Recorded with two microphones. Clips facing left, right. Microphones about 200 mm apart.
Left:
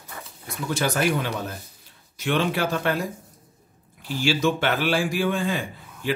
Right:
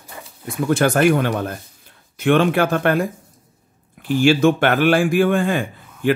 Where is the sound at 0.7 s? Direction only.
55° right (ahead or behind).